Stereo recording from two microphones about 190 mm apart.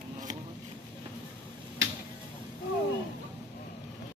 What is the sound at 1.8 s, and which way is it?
Tick-tock, 75° right (ahead or behind).